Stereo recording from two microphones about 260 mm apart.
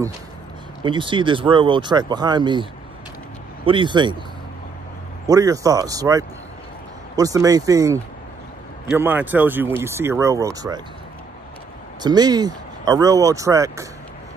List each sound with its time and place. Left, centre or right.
0.8 s speech: centre
5.2 s speech: centre
12.0 s speech: centre